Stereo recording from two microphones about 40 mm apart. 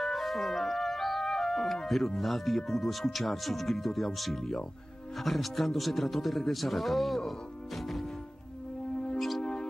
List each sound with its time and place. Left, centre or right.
0.0 s speech: centre
9.4 s mouse: left